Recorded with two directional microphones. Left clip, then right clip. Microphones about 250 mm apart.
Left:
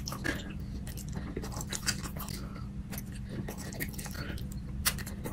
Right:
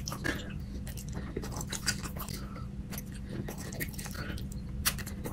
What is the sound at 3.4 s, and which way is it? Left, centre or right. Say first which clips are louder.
Toothbrush: even; centre.